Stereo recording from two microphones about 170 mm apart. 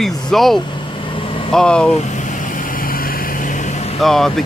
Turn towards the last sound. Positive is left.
turn(degrees=0)  # may be behind; listen again after turning